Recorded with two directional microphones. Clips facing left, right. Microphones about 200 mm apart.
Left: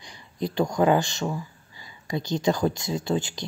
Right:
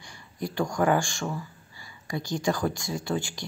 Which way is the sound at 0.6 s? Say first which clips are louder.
Left 3 dB; 20° left (ahead or behind).